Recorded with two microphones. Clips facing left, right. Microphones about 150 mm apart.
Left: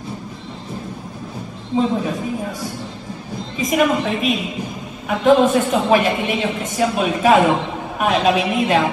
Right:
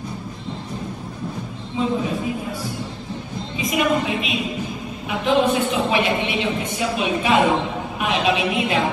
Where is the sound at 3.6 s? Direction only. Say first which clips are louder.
Left 3 dB; 45° left (ahead or behind).